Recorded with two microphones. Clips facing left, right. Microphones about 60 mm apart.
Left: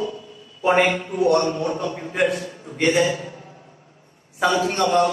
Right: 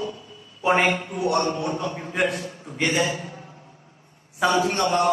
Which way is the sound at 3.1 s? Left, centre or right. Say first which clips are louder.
Left 4 dB; left.